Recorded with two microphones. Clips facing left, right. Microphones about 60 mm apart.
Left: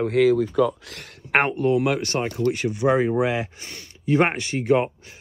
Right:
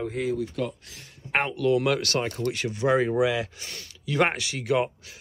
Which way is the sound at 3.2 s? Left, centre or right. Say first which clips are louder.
Left 1 dB; left.